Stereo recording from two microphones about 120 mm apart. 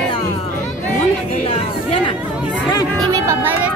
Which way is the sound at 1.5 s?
50° left (ahead or behind).